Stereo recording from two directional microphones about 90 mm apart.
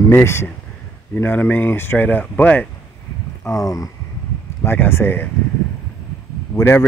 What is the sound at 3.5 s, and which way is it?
Speech, 40° left (ahead or behind).